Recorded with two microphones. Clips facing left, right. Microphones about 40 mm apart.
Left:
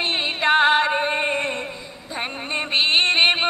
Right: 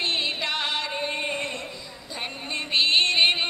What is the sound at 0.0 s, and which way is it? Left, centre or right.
Music, left.